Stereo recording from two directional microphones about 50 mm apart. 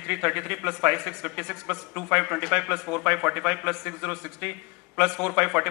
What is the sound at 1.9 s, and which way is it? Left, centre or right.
A man's voice, centre.